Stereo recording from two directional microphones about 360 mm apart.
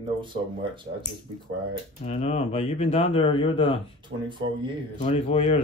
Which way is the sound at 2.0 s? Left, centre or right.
Centre.